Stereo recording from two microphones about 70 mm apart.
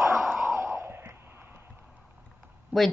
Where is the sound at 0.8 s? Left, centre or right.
Right.